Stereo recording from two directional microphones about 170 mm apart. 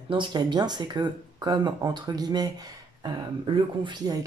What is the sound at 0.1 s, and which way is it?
Speech, 25° right (ahead or behind).